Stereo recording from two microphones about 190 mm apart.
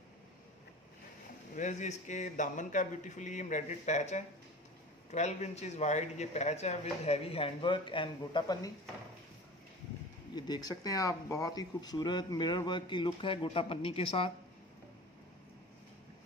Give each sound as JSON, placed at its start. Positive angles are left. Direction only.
{"t": 1.5, "sound": "speech", "side_deg": 40}
{"t": 10.3, "sound": "speech", "side_deg": 20}